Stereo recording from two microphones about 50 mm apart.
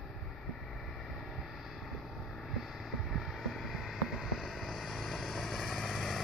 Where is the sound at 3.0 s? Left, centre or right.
Centre.